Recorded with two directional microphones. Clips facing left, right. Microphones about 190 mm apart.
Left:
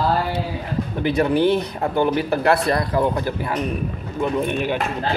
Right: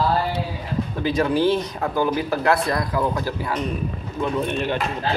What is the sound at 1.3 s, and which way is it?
Speech, 60° left (ahead or behind).